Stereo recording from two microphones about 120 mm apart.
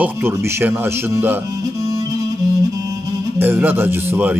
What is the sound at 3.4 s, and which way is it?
Speech, 15° right (ahead or behind).